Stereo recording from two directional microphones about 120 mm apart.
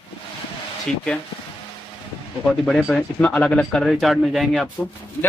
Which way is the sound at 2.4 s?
5° left (ahead or behind).